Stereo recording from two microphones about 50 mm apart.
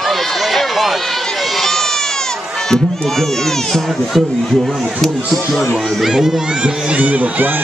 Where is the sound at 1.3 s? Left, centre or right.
Centre.